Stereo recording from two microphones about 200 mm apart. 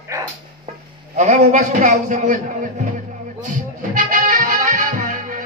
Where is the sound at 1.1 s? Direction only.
35° right (ahead or behind).